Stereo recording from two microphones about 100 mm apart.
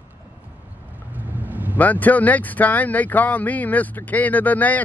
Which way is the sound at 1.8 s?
15° left (ahead or behind).